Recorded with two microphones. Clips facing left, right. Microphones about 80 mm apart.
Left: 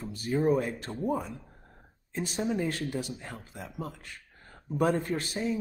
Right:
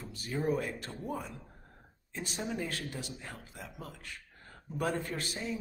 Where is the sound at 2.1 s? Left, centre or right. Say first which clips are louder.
Left 7 dB; left.